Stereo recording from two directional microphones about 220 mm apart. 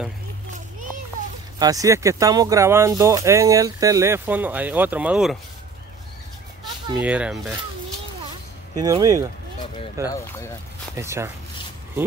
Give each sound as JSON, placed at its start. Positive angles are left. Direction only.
{"t": 1.6, "sound": "speech", "side_deg": -15}
{"t": 7.0, "sound": "speech", "side_deg": -5}
{"t": 8.7, "sound": "speech", "side_deg": -15}
{"t": 10.0, "sound": "speech", "side_deg": 15}
{"t": 11.0, "sound": "speech", "side_deg": -10}